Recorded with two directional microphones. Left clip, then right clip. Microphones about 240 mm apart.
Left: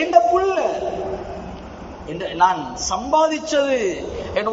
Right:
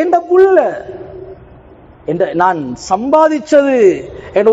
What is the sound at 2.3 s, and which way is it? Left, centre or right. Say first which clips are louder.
A man's voice: right 4 dB; right.